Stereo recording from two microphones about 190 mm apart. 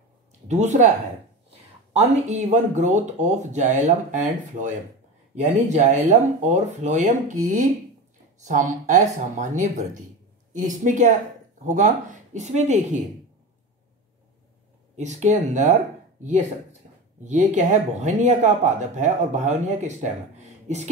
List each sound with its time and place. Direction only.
0.5 s speech: 40° right (ahead or behind)
2.0 s speech: 40° right (ahead or behind)
15.0 s speech: 35° right (ahead or behind)
16.8 s a sound: 40° right (ahead or behind)
17.2 s speech: 40° right (ahead or behind)